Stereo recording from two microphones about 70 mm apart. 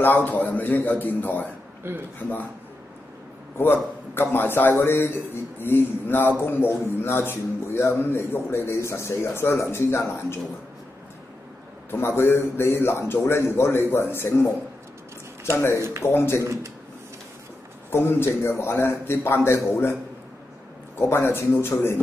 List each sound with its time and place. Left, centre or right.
0.0 s a man's voice: left
3.5 s a man's voice: left
12.2 s a man's voice: left
15.5 s a man's voice: left
17.9 s a man's voice: left
21.0 s a man's voice: left